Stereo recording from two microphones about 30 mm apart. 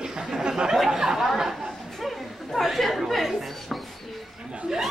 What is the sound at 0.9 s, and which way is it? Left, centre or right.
Chatter, centre.